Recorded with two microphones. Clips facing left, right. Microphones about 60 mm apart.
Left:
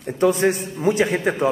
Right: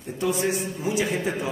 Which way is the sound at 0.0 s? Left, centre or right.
Left.